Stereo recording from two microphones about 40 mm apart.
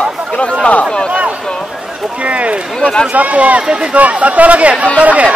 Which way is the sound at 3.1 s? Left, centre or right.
Right.